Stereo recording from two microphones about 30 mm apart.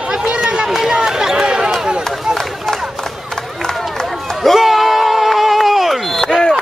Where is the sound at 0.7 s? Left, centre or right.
Centre.